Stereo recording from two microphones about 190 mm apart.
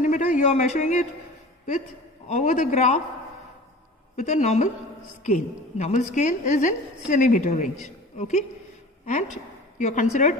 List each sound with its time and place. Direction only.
0.0 s a man's voice: 40° left (ahead or behind)
2.2 s a woman's voice: 40° left (ahead or behind)
4.2 s a woman's voice: 40° left (ahead or behind)